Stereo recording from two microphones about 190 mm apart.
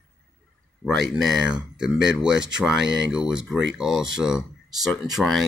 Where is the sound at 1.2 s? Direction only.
Centre (ahead or behind).